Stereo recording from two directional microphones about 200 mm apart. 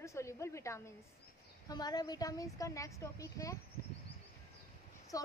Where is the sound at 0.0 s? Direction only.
15° left (ahead or behind).